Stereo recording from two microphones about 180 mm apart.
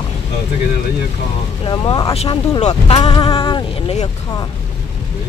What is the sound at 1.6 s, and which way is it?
Speech, 30° left (ahead or behind).